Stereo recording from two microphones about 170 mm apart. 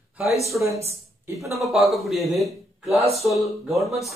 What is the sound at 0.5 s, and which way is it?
A woman's voice, 15° right (ahead or behind).